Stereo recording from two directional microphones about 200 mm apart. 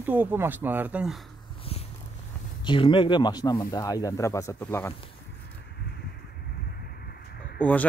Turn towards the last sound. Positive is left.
turn(degrees=5)  # may be behind; listen again after turning